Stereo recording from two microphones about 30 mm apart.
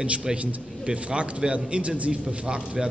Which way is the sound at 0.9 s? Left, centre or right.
Right.